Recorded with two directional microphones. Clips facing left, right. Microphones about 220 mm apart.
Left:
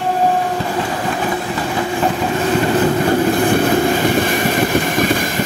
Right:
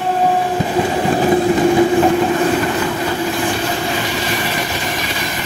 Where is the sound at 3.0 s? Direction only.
55° left (ahead or behind).